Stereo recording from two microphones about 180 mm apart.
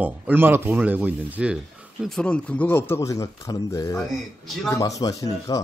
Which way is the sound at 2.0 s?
5° left (ahead or behind).